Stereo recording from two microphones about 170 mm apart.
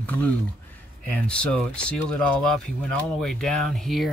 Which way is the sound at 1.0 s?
5° left (ahead or behind).